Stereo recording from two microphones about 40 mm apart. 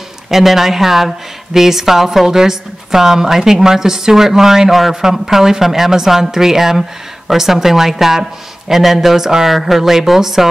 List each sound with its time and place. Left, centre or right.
0.3 s speech: centre